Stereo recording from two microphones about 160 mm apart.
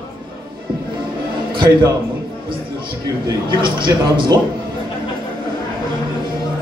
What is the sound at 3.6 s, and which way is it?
Speech, 30° right (ahead or behind).